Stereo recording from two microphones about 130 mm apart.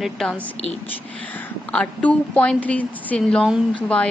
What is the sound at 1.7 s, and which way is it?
A woman's voice, 10° left (ahead or behind).